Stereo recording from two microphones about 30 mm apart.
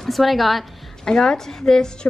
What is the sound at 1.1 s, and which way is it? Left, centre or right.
Speech, centre.